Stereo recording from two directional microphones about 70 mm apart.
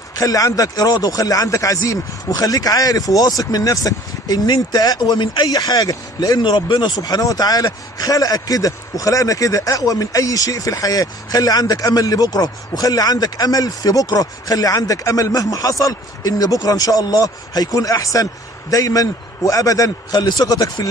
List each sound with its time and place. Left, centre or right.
0.1 s speech: left